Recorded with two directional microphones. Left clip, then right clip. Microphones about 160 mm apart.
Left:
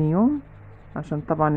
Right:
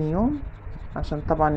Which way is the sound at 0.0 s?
15° left (ahead or behind).